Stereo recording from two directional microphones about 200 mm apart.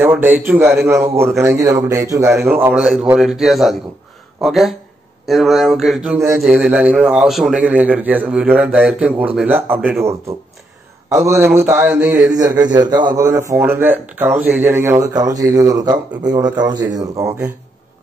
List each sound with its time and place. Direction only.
0.0 s a man's voice: 10° right (ahead or behind)
6.1 s a man's voice: 15° right (ahead or behind)
11.1 s a man's voice: 15° right (ahead or behind)
12.4 s a man's voice: 20° right (ahead or behind)